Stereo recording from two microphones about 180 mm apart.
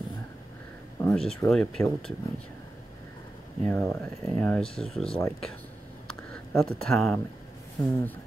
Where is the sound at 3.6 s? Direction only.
10° left (ahead or behind).